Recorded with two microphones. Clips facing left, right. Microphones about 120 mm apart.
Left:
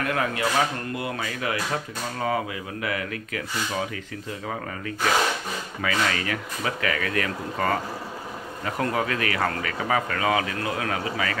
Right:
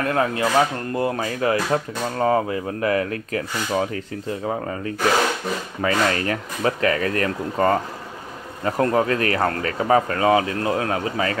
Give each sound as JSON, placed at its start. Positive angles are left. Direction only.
{"t": 0.0, "sound": "speech", "side_deg": -30}
{"t": 5.8, "sound": "speech", "side_deg": -35}